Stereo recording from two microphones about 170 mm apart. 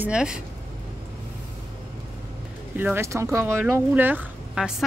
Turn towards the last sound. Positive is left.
turn(degrees=-5)  # may be behind; listen again after turning